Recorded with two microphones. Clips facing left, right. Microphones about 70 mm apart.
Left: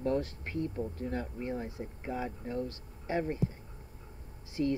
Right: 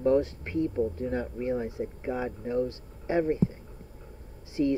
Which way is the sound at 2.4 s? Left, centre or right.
Right.